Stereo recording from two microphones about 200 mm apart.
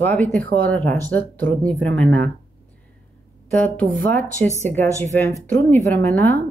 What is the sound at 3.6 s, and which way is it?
Speech, 5° left (ahead or behind).